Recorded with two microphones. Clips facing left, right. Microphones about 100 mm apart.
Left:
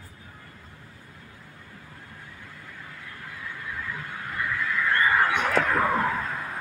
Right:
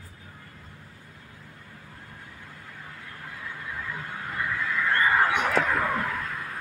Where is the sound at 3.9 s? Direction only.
20° right (ahead or behind).